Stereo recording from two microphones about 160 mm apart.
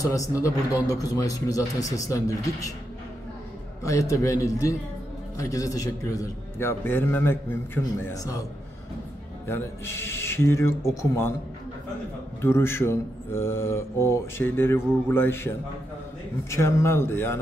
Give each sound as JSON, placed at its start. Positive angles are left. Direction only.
{"t": 0.0, "sound": "a man's voice", "side_deg": 20}
{"t": 3.8, "sound": "a man's voice", "side_deg": 20}
{"t": 9.5, "sound": "a man's voice", "side_deg": 15}
{"t": 12.4, "sound": "a man's voice", "side_deg": 15}